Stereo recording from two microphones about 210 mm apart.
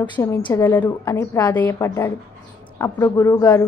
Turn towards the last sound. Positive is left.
turn(degrees=15)  # may be behind; listen again after turning